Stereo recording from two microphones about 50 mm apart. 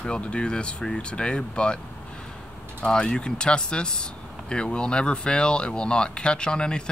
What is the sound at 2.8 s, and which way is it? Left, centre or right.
Speech, centre.